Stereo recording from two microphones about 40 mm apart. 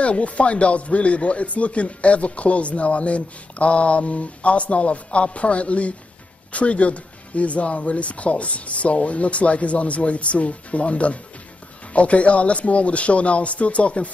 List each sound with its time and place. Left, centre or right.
0.0 s speech: left